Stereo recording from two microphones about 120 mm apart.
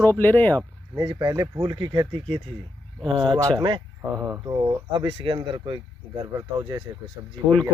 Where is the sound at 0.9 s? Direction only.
30° right (ahead or behind).